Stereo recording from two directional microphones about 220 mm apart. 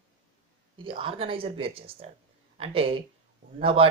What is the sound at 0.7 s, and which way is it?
Speech, 25° right (ahead or behind).